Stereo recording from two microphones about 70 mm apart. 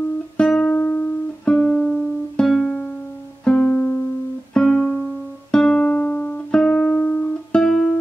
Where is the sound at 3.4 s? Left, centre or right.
Centre.